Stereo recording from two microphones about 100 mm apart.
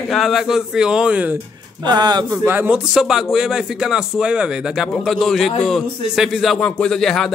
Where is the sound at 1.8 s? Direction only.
45° right (ahead or behind).